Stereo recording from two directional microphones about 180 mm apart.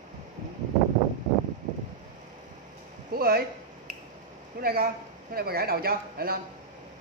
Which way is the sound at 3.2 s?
55° right (ahead or behind).